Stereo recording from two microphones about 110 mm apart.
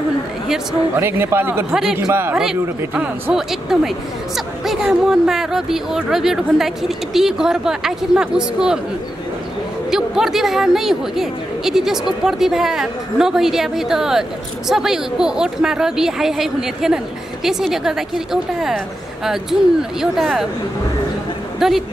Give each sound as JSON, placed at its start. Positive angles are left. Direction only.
{"t": 0.9, "sound": "a man's voice", "side_deg": -20}
{"t": 2.3, "sound": "a woman's voice", "side_deg": -5}
{"t": 9.8, "sound": "a woman's voice", "side_deg": -5}
{"t": 21.5, "sound": "speech", "side_deg": 0}